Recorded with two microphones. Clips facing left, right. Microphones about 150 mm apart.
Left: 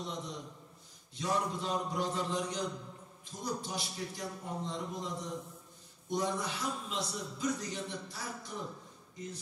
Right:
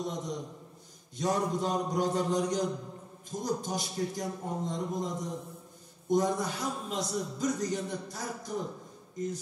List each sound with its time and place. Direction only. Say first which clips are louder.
0.0 s a man's voice: right 6 dB; 45° right (ahead or behind)